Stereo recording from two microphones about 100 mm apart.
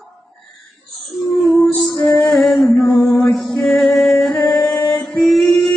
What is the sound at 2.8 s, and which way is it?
Mantra, 20° left (ahead or behind).